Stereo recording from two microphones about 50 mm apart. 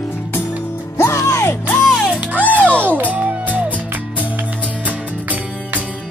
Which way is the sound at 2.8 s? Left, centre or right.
Right.